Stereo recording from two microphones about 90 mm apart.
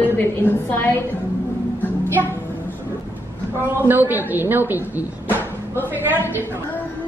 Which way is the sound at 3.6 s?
25° right (ahead or behind).